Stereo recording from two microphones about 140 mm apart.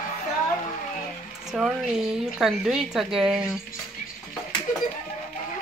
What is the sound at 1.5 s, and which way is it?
Speech, centre (ahead or behind).